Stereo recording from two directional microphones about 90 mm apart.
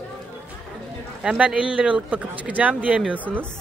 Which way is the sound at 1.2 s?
15° right (ahead or behind).